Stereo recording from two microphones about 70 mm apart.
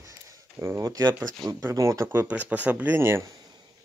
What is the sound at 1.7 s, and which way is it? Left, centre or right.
Speech, right.